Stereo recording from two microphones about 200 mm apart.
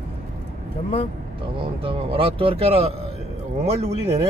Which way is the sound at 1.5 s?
25° right (ahead or behind).